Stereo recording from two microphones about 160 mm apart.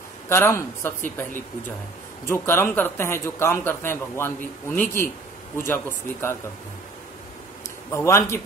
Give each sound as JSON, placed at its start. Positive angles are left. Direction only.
{"t": 0.3, "sound": "a man's voice", "side_deg": 15}
{"t": 2.2, "sound": "a man's voice", "side_deg": 15}
{"t": 7.9, "sound": "a man's voice", "side_deg": 20}